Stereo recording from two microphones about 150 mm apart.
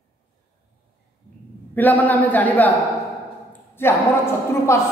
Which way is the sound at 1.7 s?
10° left (ahead or behind).